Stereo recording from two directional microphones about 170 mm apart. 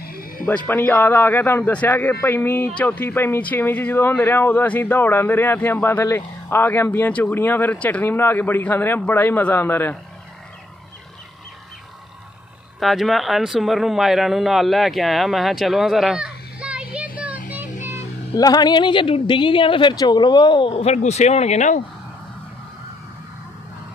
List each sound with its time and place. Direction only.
0.0 s music: 60° left (ahead or behind)
0.7 s speech: 10° left (ahead or behind)
12.8 s speech: centre (ahead or behind)
17.5 s a sound: 10° right (ahead or behind)
18.3 s speech: 20° left (ahead or behind); by 21.8 s 45° left (ahead or behind)